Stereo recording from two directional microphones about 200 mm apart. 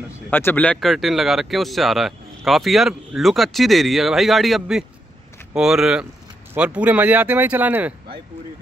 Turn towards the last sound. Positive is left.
turn(degrees=-10)  # may be behind; listen again after turning